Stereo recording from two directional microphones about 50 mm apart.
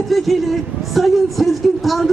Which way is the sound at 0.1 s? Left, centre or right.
Centre.